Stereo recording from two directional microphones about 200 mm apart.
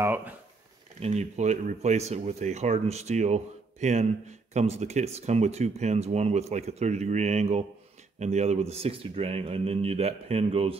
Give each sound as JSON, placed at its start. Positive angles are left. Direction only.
{"t": 0.0, "sound": "speech", "side_deg": -10}
{"t": 0.9, "sound": "speech", "side_deg": -30}